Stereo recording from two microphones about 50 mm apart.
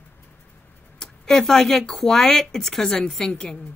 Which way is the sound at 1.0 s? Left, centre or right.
Centre.